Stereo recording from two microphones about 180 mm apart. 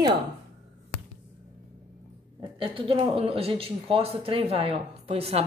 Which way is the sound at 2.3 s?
30° right (ahead or behind).